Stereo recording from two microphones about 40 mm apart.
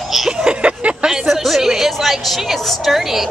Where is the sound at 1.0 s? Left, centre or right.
Centre.